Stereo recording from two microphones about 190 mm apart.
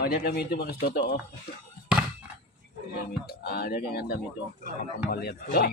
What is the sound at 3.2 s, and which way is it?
Speech, 55° left (ahead or behind).